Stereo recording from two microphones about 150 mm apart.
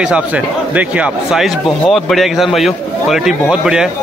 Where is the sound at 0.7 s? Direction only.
10° right (ahead or behind).